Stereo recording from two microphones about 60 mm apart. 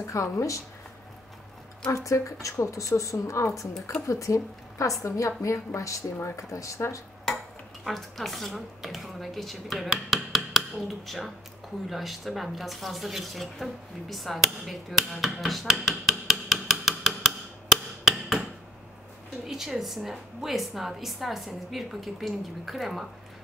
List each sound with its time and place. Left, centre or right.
0.0 s speech: left
1.9 s speech: left
7.8 s a woman's voice: centre
19.4 s a woman's voice: centre